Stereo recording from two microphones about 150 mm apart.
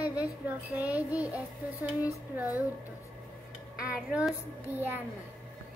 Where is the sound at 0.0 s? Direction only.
10° right (ahead or behind).